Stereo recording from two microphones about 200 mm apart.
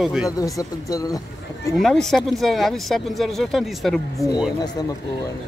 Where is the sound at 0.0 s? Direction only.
Centre (ahead or behind).